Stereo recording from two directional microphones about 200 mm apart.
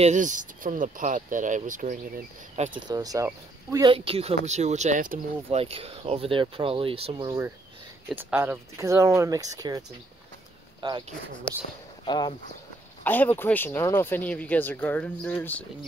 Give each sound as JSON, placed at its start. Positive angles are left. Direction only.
{"t": 0.0, "sound": "speech", "side_deg": -40}
{"t": 2.9, "sound": "speech", "side_deg": -20}
{"t": 3.9, "sound": "speech", "side_deg": -30}
{"t": 5.6, "sound": "speech", "side_deg": -30}
{"t": 8.2, "sound": "speech", "side_deg": -10}
{"t": 12.1, "sound": "speech", "side_deg": 25}
{"t": 13.0, "sound": "speech", "side_deg": 10}